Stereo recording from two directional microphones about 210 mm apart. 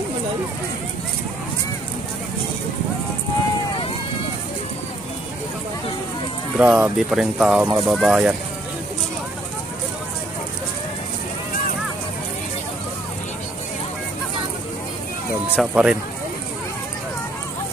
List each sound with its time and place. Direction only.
6.5 s speech: 5° right (ahead or behind)
15.5 s speech: 5° right (ahead or behind)